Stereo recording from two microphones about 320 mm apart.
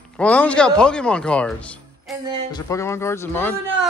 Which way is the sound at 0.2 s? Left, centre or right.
Centre.